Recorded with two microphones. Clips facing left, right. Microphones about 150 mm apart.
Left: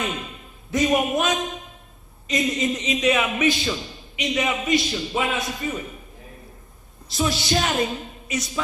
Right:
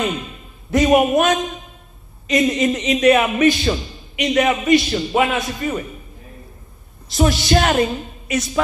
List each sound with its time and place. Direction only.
0.7 s a man's voice: 65° right (ahead or behind)
7.2 s a man's voice: 65° right (ahead or behind)